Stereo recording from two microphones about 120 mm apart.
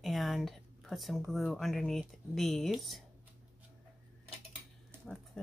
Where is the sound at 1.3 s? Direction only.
Centre (ahead or behind).